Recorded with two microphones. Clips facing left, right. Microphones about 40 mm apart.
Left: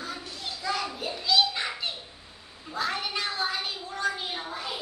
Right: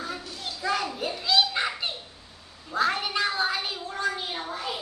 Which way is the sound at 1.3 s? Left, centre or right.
Right.